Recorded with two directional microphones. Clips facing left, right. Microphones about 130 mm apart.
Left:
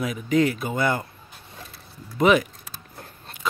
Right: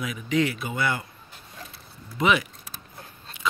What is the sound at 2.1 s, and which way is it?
Speech, 45° left (ahead or behind).